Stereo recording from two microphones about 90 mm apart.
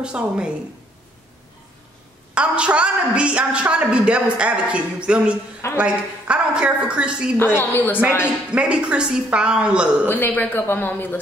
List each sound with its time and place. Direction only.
0.0 s a man's voice: 10° right (ahead or behind)
2.3 s a man's voice: 10° right (ahead or behind)
7.3 s speech: 25° left (ahead or behind)
8.5 s a man's voice: 10° right (ahead or behind)
10.0 s speech: 20° left (ahead or behind)